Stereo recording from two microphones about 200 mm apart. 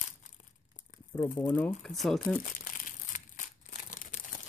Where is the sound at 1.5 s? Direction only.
10° left (ahead or behind).